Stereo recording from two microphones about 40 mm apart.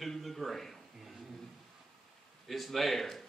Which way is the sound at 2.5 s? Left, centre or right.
Centre.